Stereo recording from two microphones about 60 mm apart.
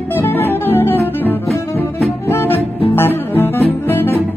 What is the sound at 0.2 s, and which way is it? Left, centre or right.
Music, left.